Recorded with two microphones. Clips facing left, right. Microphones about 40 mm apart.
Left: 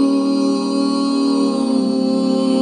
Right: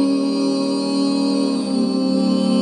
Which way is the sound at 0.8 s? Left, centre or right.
Left.